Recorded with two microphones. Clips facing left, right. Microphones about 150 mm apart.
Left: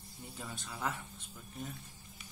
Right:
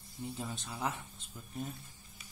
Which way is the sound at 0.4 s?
20° right (ahead or behind).